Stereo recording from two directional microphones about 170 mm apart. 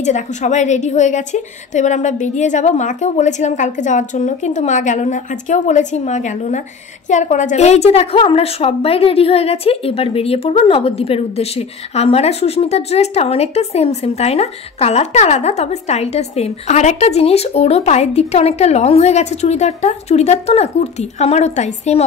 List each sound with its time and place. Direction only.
0.0 s a woman's voice: 45° left (ahead or behind)